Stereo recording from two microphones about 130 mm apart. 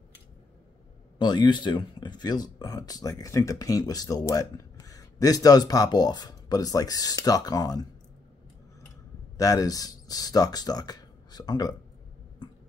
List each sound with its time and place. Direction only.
1.1 s speech: 35° left (ahead or behind)
9.4 s speech: 25° left (ahead or behind)